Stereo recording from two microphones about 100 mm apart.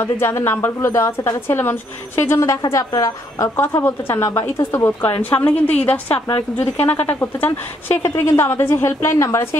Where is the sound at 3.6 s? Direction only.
25° left (ahead or behind).